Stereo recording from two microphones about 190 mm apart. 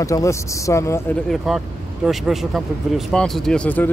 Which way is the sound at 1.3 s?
Centre (ahead or behind).